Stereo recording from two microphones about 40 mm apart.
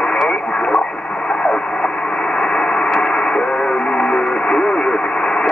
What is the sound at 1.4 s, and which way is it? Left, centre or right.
Radio, left.